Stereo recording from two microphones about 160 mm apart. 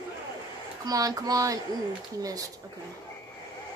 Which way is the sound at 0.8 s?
25° right (ahead or behind).